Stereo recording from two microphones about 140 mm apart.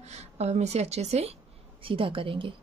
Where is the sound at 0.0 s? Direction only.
50° right (ahead or behind).